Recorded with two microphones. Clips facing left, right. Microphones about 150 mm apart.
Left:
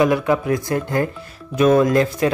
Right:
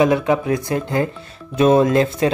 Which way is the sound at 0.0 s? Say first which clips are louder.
Right 1 dB; 25° right (ahead or behind).